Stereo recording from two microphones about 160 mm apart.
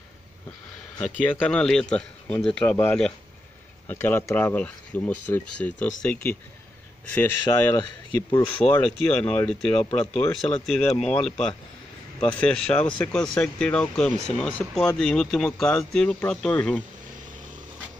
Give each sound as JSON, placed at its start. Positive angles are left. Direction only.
{"t": 1.2, "sound": "speech", "side_deg": 10}
{"t": 8.7, "sound": "speech", "side_deg": 10}
{"t": 12.4, "sound": "speech", "side_deg": 5}